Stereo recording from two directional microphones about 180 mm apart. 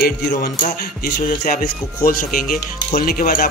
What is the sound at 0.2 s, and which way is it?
Speech, 60° left (ahead or behind).